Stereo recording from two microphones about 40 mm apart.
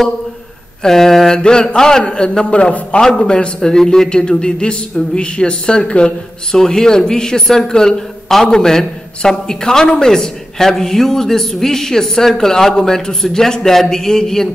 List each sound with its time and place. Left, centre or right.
0.8 s speech: centre
1.4 s a man's voice: left
6.5 s speech: centre